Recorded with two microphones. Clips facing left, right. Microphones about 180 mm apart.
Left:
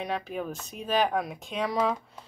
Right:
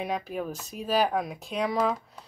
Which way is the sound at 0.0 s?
5° right (ahead or behind).